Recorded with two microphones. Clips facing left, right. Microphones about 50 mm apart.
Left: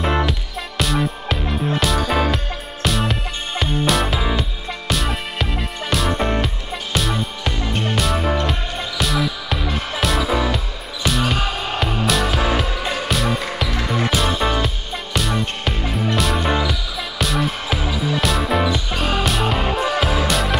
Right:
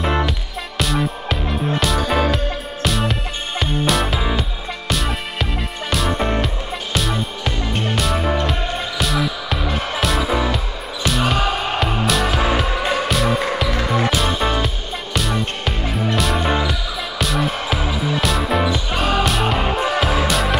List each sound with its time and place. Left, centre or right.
0.0 s music: centre
11.3 s music: centre
12.0 s music: centre
13.1 s music: centre
18.9 s music: centre
19.2 s music: centre